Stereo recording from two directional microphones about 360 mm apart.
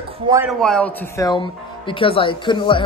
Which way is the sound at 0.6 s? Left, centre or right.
Centre.